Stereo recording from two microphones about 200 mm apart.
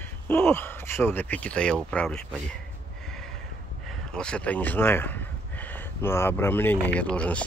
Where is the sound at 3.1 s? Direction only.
Centre (ahead or behind).